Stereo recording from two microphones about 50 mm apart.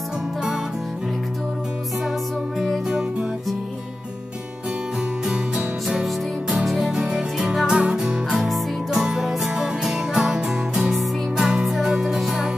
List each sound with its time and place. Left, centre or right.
2.6 s music: centre
5.2 s music: centre
6.9 s music: centre
7.3 s music: centre
7.6 s music: centre
8.5 s music: centre